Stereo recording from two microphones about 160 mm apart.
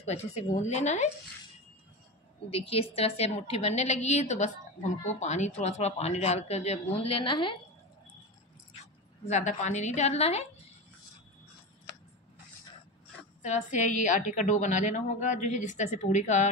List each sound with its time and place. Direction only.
0.0 s a woman's voice: 45° left (ahead or behind)
2.5 s a woman's voice: 35° left (ahead or behind)
9.2 s a woman's voice: 45° left (ahead or behind)
13.4 s a woman's voice: 50° left (ahead or behind)